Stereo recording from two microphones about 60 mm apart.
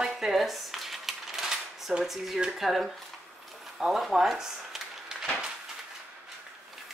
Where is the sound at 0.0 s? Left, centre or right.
Centre.